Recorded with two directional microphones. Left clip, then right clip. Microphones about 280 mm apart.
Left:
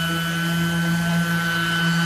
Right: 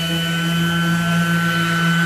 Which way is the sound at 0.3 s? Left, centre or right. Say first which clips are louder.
Right 3 dB; left.